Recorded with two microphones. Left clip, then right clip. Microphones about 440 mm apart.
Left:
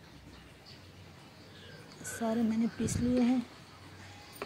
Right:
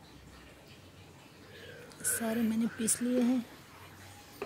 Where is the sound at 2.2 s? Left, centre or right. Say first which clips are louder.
Left 2 dB; right.